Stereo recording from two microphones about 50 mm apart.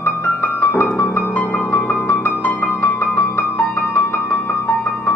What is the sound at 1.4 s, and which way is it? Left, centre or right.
Music, left.